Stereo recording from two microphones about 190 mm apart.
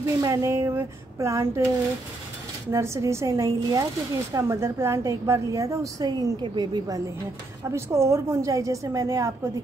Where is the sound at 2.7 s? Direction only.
15° right (ahead or behind).